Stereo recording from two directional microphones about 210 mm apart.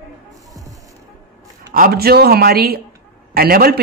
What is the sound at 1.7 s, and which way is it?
Speech, 45° right (ahead or behind).